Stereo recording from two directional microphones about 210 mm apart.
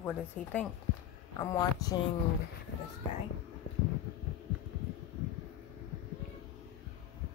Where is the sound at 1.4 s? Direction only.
20° left (ahead or behind).